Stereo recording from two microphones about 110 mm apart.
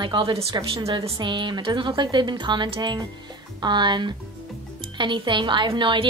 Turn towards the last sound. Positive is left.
turn(degrees=-50)  # may be behind; listen again after turning